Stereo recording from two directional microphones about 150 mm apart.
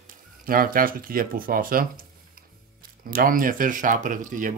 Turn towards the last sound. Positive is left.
turn(degrees=-60)  # may be behind; listen again after turning